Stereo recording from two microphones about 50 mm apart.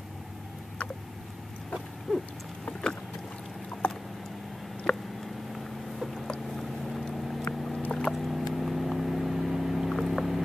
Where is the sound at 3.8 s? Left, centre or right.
Left.